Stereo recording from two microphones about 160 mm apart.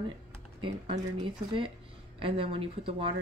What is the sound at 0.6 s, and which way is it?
Speech, 30° right (ahead or behind).